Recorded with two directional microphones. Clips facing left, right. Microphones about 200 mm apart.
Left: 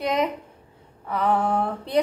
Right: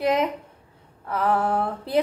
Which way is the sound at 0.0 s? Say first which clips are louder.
Right 2 dB; centre (ahead or behind).